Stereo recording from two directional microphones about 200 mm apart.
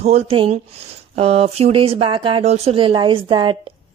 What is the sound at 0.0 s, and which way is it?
A woman's voice, 30° right (ahead or behind).